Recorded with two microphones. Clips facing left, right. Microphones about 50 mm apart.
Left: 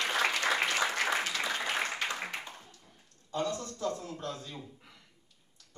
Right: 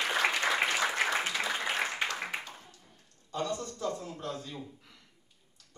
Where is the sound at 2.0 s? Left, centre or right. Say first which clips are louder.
Right 1 dB; centre.